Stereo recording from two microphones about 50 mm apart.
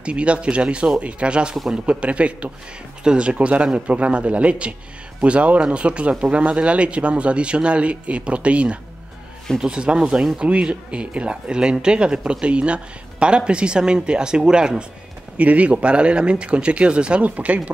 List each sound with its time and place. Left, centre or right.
0.0 s speech: right
15.3 s speech: right